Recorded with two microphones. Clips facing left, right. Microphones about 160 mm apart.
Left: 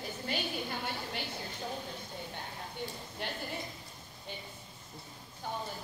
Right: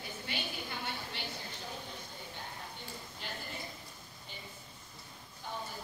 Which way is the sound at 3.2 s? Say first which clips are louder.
Left 7 dB; 65° left (ahead or behind).